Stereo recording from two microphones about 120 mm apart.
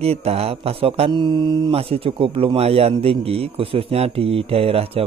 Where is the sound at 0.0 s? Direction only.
55° right (ahead or behind); by 1.7 s 40° right (ahead or behind).